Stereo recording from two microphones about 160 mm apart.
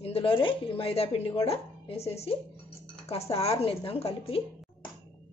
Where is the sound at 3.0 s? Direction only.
40° left (ahead or behind).